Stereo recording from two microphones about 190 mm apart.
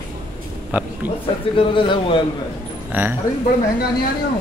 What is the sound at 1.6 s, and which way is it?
Speech, 25° left (ahead or behind).